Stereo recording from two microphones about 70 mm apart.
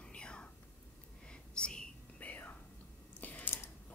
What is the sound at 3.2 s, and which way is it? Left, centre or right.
Typing, left.